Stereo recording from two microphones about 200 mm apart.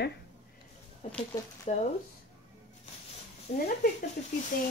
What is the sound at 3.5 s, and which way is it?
Speech, 35° left (ahead or behind).